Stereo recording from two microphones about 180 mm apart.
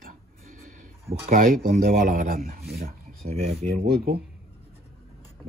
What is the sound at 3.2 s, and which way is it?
Speech, 35° right (ahead or behind).